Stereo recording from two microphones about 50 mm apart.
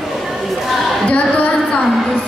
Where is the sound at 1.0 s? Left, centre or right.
Left.